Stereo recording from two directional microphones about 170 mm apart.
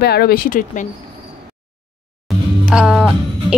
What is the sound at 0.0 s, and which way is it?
Speech, 70° left (ahead or behind).